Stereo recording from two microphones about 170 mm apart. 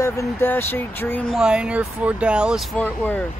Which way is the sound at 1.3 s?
5° right (ahead or behind).